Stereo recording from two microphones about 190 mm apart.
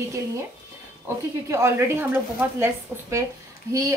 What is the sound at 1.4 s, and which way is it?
A woman's voice, 15° right (ahead or behind).